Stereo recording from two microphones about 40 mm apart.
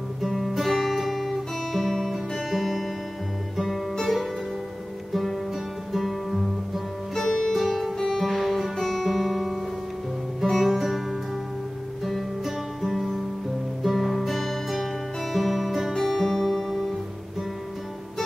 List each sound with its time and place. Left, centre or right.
0.2 s guitar: centre
2.1 s music: centre
3.5 s guitar: centre
3.9 s music: centre
8.7 s guitar: centre
10.6 s music: centre
12.0 s guitar: centre
15.3 s music: centre
15.9 s music: centre